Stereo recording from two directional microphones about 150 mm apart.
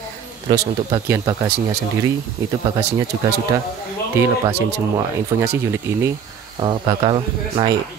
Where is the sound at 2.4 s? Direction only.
20° right (ahead or behind).